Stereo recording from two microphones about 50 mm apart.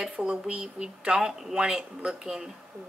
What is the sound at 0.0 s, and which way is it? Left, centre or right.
Speech, centre.